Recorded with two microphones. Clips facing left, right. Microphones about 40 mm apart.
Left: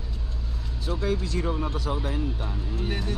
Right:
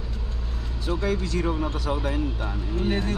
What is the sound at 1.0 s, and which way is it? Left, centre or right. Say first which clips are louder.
Speech: right 1 dB; right.